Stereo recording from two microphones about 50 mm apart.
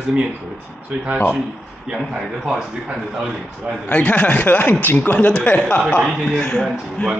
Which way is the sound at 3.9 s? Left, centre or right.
Left.